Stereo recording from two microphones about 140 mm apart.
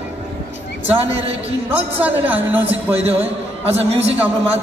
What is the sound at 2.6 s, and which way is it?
A man's voice, 45° right (ahead or behind).